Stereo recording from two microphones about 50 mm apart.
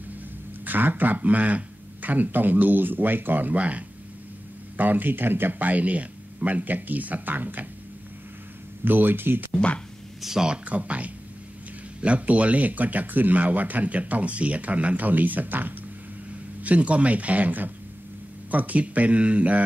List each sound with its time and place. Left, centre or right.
0.7 s speech: right
4.7 s speech: right
8.8 s speech: right
10.2 s speech: centre
10.6 s speech: right
16.6 s speech: right